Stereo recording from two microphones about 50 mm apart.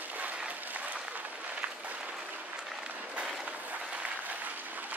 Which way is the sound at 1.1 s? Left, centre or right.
Right.